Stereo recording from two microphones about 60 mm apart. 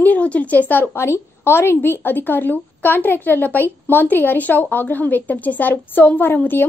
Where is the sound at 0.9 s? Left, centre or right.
Left.